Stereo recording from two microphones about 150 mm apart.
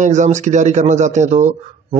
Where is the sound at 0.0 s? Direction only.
55° right (ahead or behind).